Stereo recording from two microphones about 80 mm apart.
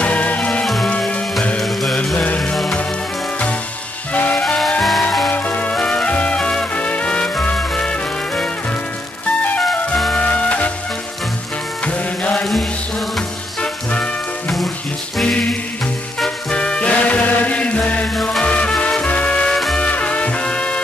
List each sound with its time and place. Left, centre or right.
0.0 s music: centre
1.6 s music: centre
2.1 s music: centre
2.5 s music: centre
4.1 s music: centre
5.3 s music: centre
9.7 s music: centre
10.1 s music: centre
11.8 s music: centre
15.2 s music: centre
19.9 s music: centre